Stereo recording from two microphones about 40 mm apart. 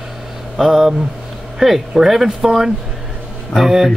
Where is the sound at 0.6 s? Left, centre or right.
Centre.